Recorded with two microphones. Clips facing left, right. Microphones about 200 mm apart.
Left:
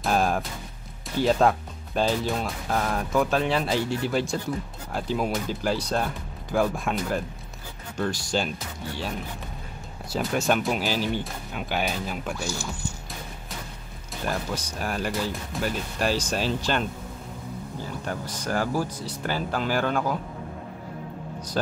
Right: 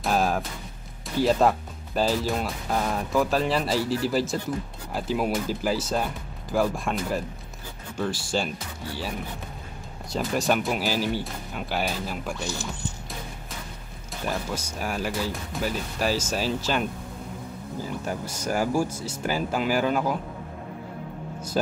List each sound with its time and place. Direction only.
0.0 s speech: centre (ahead or behind)
10.0 s speech: centre (ahead or behind)
12.4 s speech: 20° right (ahead or behind)
14.2 s speech: 5° right (ahead or behind)
18.0 s speech: 10° right (ahead or behind)